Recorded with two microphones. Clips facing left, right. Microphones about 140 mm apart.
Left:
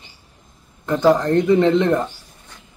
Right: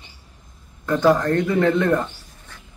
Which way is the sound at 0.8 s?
20° left (ahead or behind).